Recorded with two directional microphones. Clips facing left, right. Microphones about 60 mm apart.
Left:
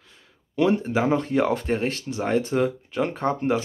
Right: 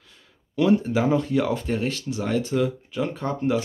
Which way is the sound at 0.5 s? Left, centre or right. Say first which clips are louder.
Right 1 dB; left.